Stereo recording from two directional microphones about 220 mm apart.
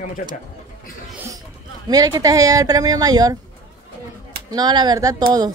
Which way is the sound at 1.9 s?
15° right (ahead or behind).